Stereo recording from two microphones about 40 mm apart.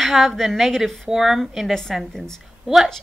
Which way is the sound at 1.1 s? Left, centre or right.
Centre.